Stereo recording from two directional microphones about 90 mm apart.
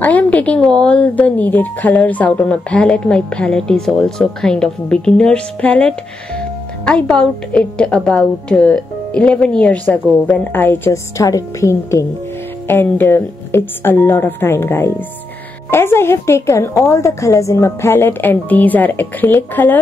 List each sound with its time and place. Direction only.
0.0 s speech: 15° left (ahead or behind)
10.9 s a woman's voice: 40° left (ahead or behind)
12.6 s a woman's voice: 25° left (ahead or behind)